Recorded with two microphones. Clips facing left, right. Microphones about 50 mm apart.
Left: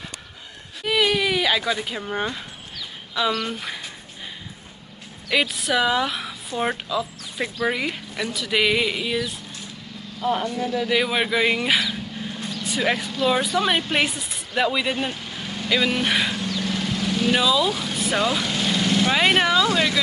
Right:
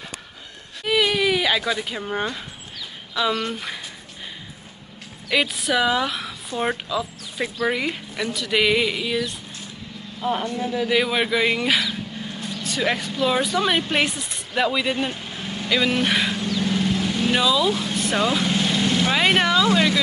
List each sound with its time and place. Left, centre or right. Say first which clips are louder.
0.8 s baby cry: right 1 dB; centre
1.9 s speech: right 1 dB; centre
5.3 s speech: even; centre
10.2 s speech: left 1 dB; centre
15.1 s vehicle: right 1 dB; centre
18.7 s speech: left 4 dB; centre
19.7 s speech: right 2 dB; right